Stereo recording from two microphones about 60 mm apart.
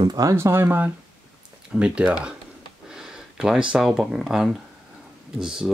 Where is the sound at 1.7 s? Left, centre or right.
Centre.